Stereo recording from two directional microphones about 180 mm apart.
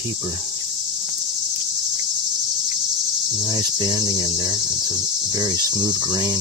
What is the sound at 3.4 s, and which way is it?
Cricket, 25° right (ahead or behind).